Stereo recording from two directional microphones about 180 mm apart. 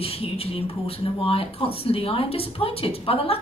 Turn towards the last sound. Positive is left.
turn(degrees=30)  # may be behind; listen again after turning